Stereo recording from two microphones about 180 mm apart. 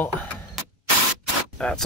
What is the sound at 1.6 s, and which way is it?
Speech, 5° left (ahead or behind).